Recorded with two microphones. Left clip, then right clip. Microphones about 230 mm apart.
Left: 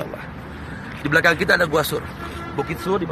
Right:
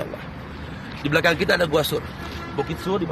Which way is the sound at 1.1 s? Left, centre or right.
Centre.